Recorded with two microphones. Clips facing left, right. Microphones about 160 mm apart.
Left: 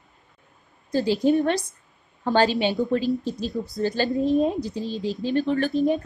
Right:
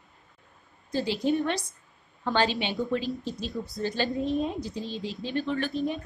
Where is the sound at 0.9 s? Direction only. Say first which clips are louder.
Left 6 dB; 40° left (ahead or behind).